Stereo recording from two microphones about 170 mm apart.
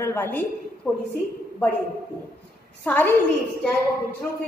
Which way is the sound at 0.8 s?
5° right (ahead or behind).